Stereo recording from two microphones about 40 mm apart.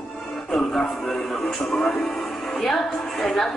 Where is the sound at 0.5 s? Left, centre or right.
Left.